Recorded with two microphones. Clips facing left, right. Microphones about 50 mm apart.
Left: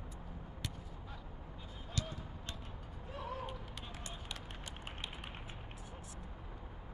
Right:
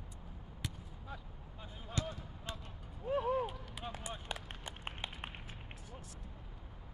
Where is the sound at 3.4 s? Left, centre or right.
Centre.